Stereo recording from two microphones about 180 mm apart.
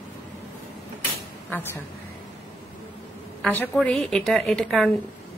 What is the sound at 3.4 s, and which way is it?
A woman's voice, 5° left (ahead or behind).